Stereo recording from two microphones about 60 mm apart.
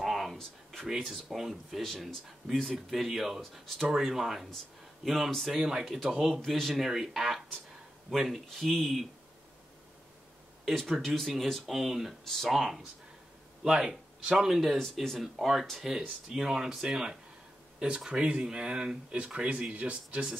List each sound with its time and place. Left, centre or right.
0.0 s a sound: centre
0.8 s speech: centre
5.6 s speech: centre
10.6 s speech: centre
16.3 s speech: centre